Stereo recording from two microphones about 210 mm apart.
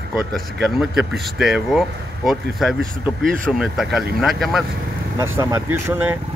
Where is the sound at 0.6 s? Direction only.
Centre (ahead or behind).